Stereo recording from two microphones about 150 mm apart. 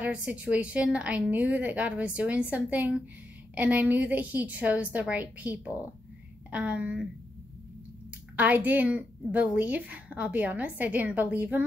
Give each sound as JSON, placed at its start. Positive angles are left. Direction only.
{"t": 0.0, "sound": "a woman's voice", "side_deg": -10}
{"t": 8.4, "sound": "a woman's voice", "side_deg": -10}